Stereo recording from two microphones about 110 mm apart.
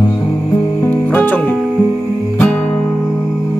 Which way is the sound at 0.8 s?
15° left (ahead or behind).